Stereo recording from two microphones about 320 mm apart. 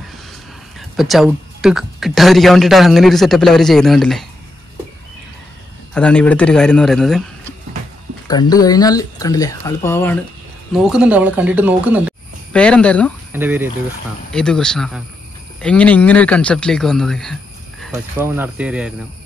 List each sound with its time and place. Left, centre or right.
0.7 s speech: centre
5.9 s speech: centre
8.3 s speech: centre